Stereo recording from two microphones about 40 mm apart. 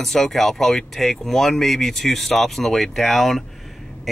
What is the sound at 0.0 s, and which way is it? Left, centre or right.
Speech, centre.